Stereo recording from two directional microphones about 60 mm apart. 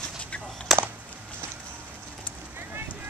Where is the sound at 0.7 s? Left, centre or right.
Centre.